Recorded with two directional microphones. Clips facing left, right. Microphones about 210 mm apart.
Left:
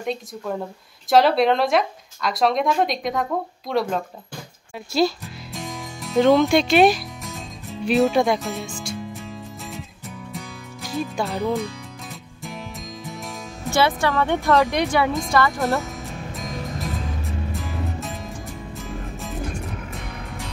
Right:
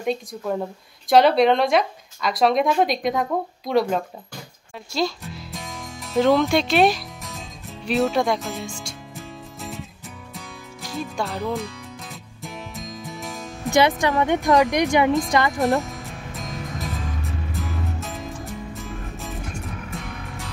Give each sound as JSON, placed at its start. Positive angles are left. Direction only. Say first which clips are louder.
{"t": 0.0, "sound": "speech", "louder": "right 2 dB", "side_deg": 0}
{"t": 4.9, "sound": "music", "louder": "left 4 dB", "side_deg": 5}
{"t": 13.7, "sound": "speech", "louder": "right 2 dB", "side_deg": -15}
{"t": 15.8, "sound": "music", "louder": "left 2 dB", "side_deg": 0}